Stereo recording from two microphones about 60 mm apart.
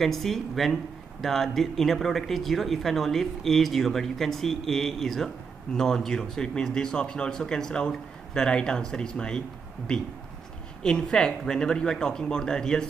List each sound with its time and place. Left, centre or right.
0.0 s speech: centre
10.8 s speech: centre